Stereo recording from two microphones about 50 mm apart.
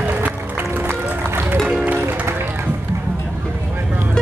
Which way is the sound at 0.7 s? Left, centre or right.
Right.